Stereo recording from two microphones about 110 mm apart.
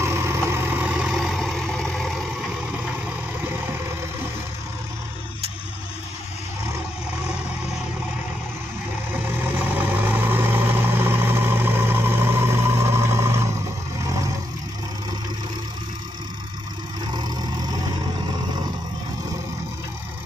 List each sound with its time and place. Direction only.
0.0 s vehicle: 25° right (ahead or behind)
0.8 s vehicle: 10° right (ahead or behind)
9.6 s vehicle: 15° right (ahead or behind)
17.1 s vehicle: 40° right (ahead or behind)